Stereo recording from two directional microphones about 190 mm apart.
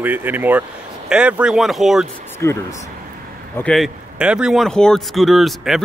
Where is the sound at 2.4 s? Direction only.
15° left (ahead or behind).